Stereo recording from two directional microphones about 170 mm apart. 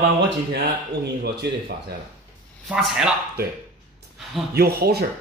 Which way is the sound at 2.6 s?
5° right (ahead or behind).